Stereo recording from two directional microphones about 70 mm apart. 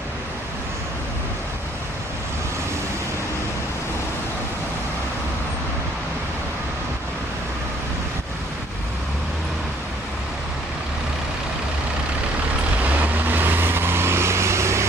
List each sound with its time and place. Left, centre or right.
13.0 s vehicle: right